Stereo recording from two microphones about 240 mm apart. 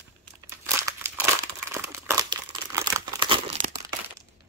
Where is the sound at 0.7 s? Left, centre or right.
Centre.